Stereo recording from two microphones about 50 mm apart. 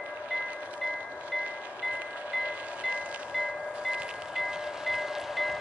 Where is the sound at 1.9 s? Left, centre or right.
Right.